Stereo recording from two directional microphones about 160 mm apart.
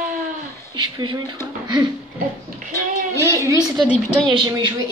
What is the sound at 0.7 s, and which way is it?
Speech, 30° right (ahead or behind).